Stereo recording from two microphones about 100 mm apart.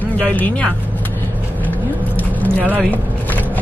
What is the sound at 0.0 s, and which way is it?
Speech, 15° left (ahead or behind).